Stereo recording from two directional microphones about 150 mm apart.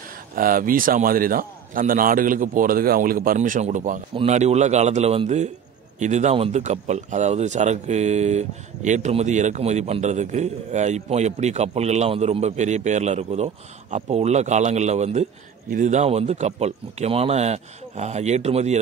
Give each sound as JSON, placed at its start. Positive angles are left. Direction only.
{"t": 0.4, "sound": "a man's voice", "side_deg": -70}
{"t": 3.3, "sound": "a man's voice", "side_deg": -55}